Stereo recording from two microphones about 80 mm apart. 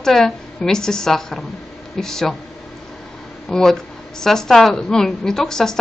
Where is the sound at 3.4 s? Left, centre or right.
Centre.